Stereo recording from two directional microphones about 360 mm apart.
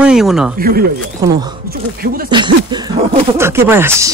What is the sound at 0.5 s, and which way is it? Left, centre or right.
Speech, right.